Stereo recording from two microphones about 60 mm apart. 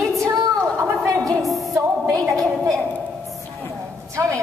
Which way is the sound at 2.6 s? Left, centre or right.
Centre.